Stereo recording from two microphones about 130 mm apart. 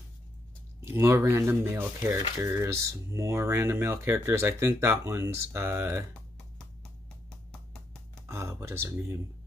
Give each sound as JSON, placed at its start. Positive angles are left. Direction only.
{"t": 0.8, "sound": "speech", "side_deg": -15}
{"t": 8.3, "sound": "speech", "side_deg": -20}